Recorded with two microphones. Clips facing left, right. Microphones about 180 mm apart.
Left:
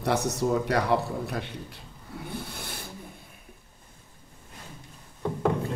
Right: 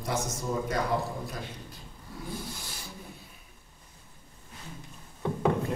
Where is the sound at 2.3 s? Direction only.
60° left (ahead or behind).